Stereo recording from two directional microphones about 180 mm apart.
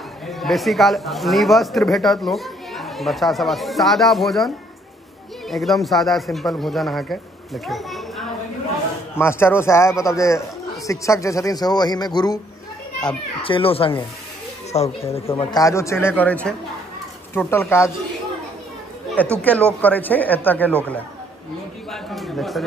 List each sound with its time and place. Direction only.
0.3 s speech: centre (ahead or behind)
5.5 s a woman's voice: centre (ahead or behind)
9.1 s speech: 15° left (ahead or behind)
13.4 s speech: 30° left (ahead or behind)
15.6 s speech: 15° left (ahead or behind)
19.4 s speech: 10° left (ahead or behind)